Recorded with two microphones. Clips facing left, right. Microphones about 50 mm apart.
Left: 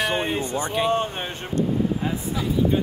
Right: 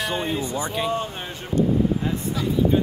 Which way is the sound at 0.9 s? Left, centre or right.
Left.